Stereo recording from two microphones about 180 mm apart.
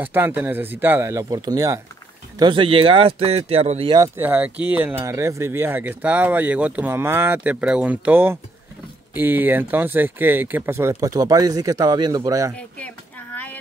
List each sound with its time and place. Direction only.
0.0 s speech: 10° right (ahead or behind); by 3.9 s 35° right (ahead or behind)
4.2 s speech: 10° right (ahead or behind)
12.5 s a sound: 5° left (ahead or behind)